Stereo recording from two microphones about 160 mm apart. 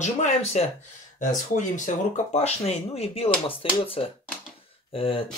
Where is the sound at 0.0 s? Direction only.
45° left (ahead or behind).